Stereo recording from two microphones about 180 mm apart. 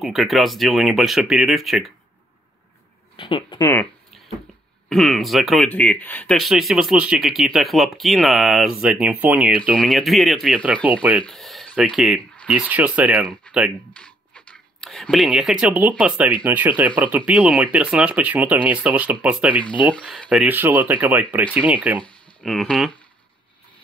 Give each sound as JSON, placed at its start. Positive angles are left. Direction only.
{"t": 0.0, "sound": "speech", "side_deg": 0}
{"t": 3.2, "sound": "a sound", "side_deg": 25}
{"t": 4.8, "sound": "speech", "side_deg": 0}
{"t": 13.9, "sound": "a sound", "side_deg": 5}
{"t": 16.4, "sound": "speech", "side_deg": -10}
{"t": 19.9, "sound": "speech", "side_deg": 5}
{"t": 22.4, "sound": "speech", "side_deg": 0}